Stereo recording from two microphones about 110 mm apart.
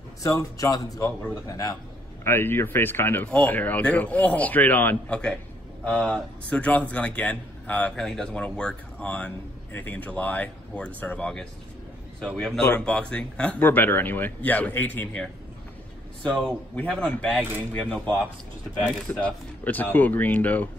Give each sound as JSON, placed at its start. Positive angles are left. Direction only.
{"t": 0.2, "sound": "speech", "side_deg": 30}
{"t": 2.2, "sound": "a man's voice", "side_deg": 20}
{"t": 16.2, "sound": "a man's voice", "side_deg": 5}